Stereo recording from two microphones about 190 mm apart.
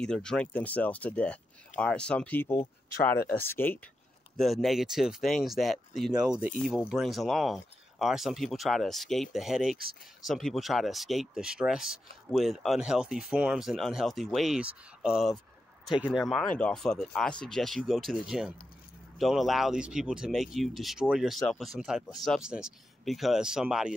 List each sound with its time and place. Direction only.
0.0 s speech: 5° left (ahead or behind)
4.4 s speech: centre (ahead or behind)